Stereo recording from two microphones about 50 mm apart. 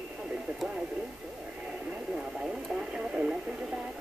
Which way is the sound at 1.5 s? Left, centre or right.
Right.